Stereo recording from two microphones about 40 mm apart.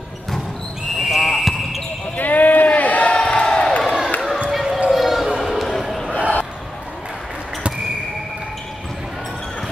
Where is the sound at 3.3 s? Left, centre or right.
Left.